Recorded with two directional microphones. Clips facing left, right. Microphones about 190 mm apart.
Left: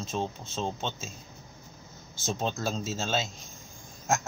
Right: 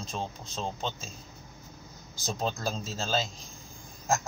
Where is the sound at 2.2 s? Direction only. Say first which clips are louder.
Left 1 dB; centre (ahead or behind).